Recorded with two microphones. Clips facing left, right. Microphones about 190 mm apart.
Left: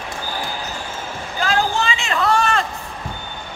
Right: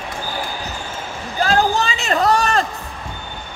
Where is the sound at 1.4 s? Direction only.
40° right (ahead or behind).